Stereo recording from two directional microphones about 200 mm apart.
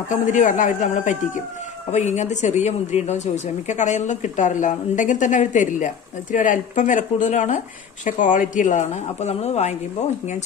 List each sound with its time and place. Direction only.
0.1 s speech: 40° left (ahead or behind)